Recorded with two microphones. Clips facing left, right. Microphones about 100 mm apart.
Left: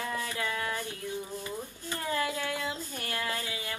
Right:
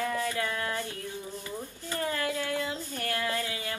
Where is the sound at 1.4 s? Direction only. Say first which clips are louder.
Even; 25° left (ahead or behind).